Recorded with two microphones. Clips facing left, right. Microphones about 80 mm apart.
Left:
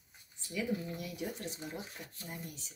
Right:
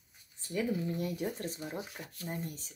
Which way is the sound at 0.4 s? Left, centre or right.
Right.